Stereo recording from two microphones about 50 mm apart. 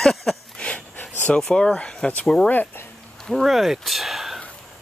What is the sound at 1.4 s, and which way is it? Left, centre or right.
Speech, centre.